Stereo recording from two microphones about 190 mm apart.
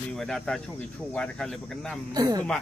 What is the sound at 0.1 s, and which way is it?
Speech, centre (ahead or behind).